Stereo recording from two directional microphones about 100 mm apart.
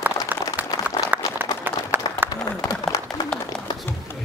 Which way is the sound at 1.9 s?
20° right (ahead or behind).